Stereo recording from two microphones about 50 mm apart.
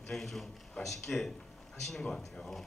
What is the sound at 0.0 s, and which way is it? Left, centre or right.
A man's voice, centre.